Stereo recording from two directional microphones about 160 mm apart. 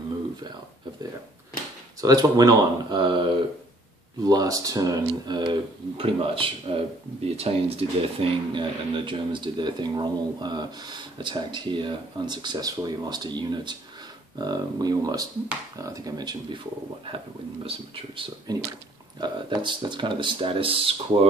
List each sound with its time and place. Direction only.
2.0 s speech: 25° right (ahead or behind)
17.6 s speech: 35° right (ahead or behind)
18.5 s speech: 25° right (ahead or behind)